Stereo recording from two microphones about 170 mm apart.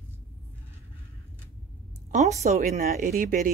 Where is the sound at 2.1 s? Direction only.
40° right (ahead or behind).